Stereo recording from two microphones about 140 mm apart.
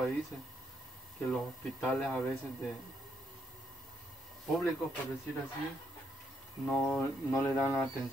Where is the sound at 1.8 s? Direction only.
5° left (ahead or behind).